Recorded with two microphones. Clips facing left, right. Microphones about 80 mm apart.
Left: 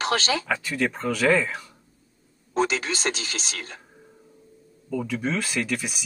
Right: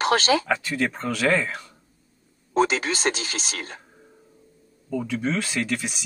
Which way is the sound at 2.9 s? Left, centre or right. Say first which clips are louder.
Right 3 dB; right.